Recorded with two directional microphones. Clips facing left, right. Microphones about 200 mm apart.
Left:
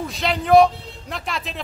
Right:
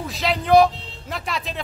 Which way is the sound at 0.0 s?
Centre (ahead or behind).